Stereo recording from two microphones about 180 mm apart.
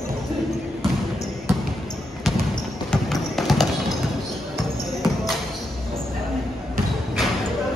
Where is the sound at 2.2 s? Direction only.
Centre (ahead or behind).